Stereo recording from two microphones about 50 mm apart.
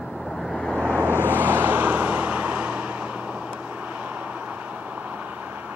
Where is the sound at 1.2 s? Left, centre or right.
Right.